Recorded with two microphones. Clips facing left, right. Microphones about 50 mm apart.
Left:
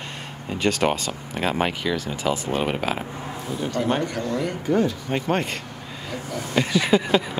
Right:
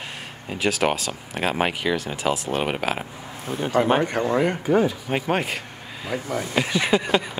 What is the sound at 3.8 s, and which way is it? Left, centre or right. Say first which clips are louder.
Speech: right 3 dB; right.